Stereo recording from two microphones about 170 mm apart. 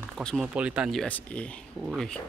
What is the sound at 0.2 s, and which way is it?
Speech, 5° left (ahead or behind).